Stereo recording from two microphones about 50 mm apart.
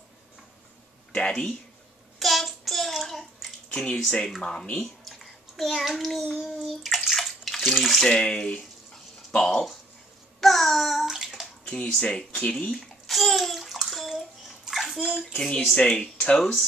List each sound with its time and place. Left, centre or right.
1.1 s speech: centre
2.1 s child singing: centre
3.7 s speech: centre
5.0 s a sound: centre
6.4 s bathtub: centre
8.1 s speech: centre
10.4 s bathtub: centre
12.4 s speech: centre
12.7 s bathtub: centre
15.3 s speech: centre
15.7 s speech: left